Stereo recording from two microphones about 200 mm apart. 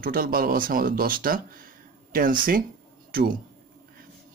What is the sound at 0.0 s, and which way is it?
Speech, 45° right (ahead or behind).